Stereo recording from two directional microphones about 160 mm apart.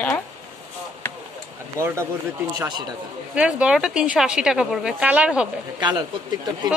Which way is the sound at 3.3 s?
5° right (ahead or behind).